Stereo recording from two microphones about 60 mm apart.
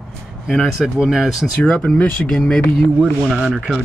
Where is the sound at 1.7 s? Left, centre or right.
Centre.